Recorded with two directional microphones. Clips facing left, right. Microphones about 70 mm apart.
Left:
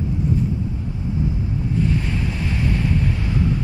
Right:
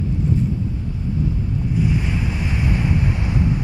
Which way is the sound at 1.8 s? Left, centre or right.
Centre.